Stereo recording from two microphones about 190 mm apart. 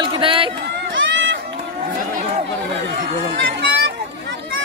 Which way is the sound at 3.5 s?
60° right (ahead or behind).